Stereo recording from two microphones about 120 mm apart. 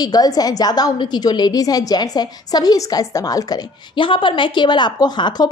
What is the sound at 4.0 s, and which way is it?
A woman's voice, 45° left (ahead or behind).